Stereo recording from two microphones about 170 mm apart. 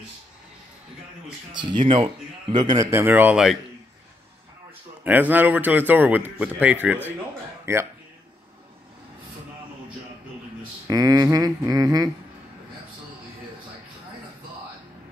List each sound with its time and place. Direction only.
1.5 s a man's voice: 25° right (ahead or behind); by 3.5 s 5° right (ahead or behind)
5.0 s a man's voice: 10° right (ahead or behind)
10.9 s speech: 20° right (ahead or behind)